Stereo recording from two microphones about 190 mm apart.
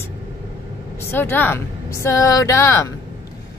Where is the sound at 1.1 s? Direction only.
10° left (ahead or behind).